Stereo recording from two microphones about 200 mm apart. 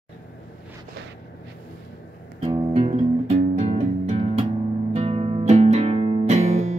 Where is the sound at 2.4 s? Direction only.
25° right (ahead or behind).